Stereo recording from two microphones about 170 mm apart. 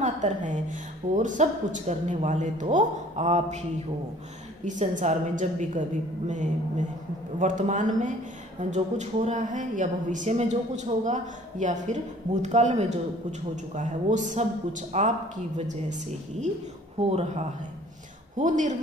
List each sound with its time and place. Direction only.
0.0 s a woman's voice: 45° right (ahead or behind)
4.6 s a woman's voice: 45° right (ahead or behind)